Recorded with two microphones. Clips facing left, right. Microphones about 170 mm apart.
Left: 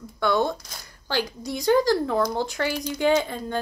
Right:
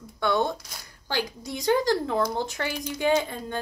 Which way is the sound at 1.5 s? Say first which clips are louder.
Left 3 dB; 20° right (ahead or behind).